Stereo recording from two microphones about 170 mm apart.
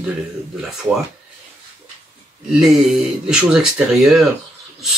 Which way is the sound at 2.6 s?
Centre (ahead or behind).